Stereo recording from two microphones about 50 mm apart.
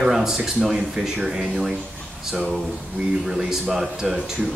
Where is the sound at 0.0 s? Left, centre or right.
Centre.